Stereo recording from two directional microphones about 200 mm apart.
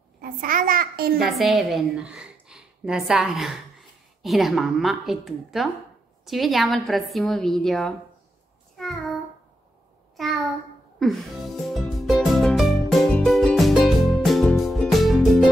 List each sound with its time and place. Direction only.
0.2 s a child's voice: 45° right (ahead or behind)
1.1 s a woman's voice: centre (ahead or behind)
8.7 s child singing: centre (ahead or behind)
10.1 s a sound: centre (ahead or behind)
11.0 s music: centre (ahead or behind)